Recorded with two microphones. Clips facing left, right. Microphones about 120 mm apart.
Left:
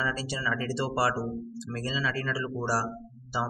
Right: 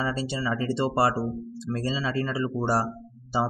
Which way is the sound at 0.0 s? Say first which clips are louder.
Right 3 dB; 25° right (ahead or behind).